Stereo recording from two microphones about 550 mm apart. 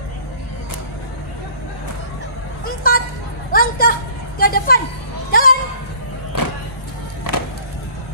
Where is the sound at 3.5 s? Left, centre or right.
Centre.